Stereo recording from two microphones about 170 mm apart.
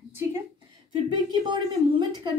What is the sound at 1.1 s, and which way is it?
Speech, 25° right (ahead or behind).